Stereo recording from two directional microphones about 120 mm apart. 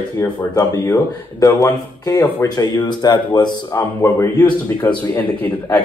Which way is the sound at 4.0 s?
25° left (ahead or behind).